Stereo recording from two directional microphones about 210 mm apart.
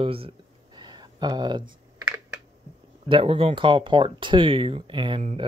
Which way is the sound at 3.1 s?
25° right (ahead or behind).